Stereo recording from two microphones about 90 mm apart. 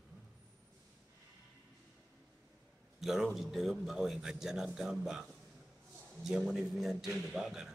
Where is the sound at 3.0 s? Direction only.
Centre (ahead or behind).